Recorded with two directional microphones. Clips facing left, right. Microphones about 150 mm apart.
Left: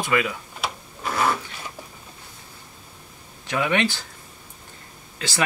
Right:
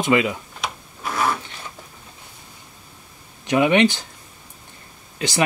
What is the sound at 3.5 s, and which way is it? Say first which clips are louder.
Speech: right 7 dB; 20° right (ahead or behind).